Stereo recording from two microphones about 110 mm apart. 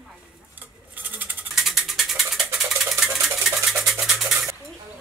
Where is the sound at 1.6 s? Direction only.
Centre (ahead or behind).